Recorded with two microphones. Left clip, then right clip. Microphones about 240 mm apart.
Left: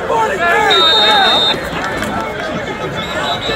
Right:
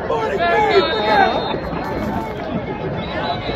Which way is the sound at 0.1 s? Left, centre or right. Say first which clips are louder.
Left 5 dB; left.